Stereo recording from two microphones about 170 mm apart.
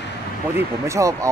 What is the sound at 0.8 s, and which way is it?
Speech, 15° right (ahead or behind).